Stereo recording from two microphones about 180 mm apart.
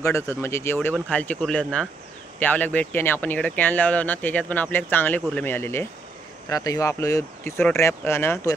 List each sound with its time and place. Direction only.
0.0 s speech: 15° left (ahead or behind)